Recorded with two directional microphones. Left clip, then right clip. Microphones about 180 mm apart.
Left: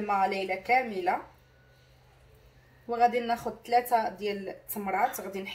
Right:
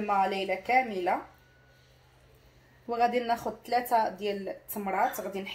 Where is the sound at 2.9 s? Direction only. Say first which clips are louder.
Left 1 dB; 30° right (ahead or behind).